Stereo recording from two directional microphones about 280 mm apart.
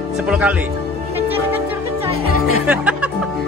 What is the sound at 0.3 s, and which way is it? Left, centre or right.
Speech, centre.